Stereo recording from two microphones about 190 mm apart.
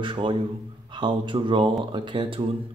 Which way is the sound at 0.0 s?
25° right (ahead or behind).